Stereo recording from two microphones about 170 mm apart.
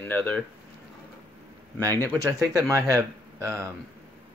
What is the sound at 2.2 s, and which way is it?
Speech, 20° right (ahead or behind).